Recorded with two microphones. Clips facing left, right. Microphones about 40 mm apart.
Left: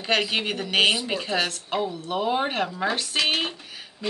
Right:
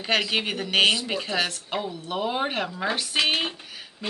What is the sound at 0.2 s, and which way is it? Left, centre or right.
Speech, centre.